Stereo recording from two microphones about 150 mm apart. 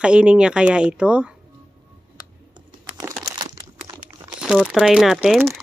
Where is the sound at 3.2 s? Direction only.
20° right (ahead or behind).